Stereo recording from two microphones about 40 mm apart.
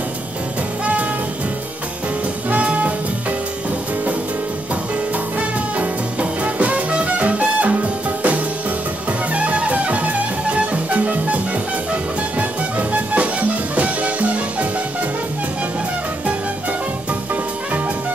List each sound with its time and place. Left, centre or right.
2.5 s music: right
5.1 s music: right